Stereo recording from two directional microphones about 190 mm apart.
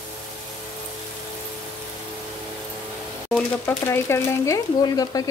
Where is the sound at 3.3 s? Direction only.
10° left (ahead or behind).